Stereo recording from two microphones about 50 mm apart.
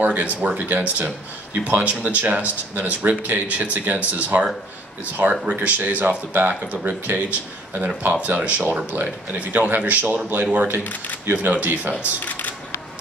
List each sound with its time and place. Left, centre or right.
0.0 s speech: right
5.3 s speech: centre
5.9 s speech: right
6.7 s speech: right
7.1 s speech: right
10.8 s speech: left
11.3 s speech: right
12.3 s a sound: left